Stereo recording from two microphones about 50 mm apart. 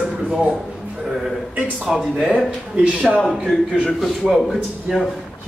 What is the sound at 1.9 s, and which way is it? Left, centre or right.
Speech, centre.